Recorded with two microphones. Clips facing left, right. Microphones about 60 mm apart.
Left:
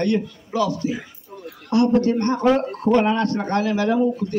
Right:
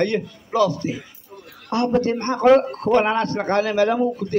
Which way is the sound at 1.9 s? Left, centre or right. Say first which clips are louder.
Left 1 dB; right.